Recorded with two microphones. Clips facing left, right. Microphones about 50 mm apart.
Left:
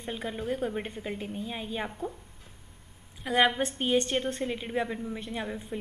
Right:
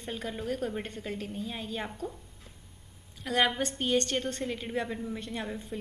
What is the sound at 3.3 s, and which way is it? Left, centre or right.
A woman's voice, centre.